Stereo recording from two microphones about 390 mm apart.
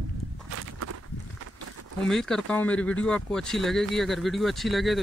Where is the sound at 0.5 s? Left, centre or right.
Right.